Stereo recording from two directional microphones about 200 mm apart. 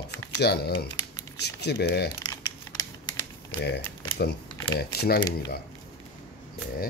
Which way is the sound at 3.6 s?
55° left (ahead or behind).